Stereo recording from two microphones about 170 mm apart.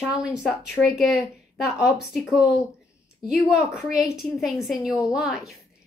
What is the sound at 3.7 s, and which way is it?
Speech, centre (ahead or behind).